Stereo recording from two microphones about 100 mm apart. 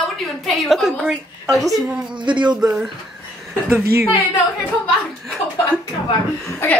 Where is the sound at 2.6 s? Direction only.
5° right (ahead or behind).